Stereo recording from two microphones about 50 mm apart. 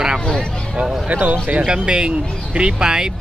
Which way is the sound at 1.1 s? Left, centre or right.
Right.